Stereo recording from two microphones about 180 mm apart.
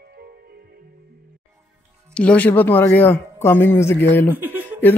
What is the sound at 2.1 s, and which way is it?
A man's voice, 5° left (ahead or behind).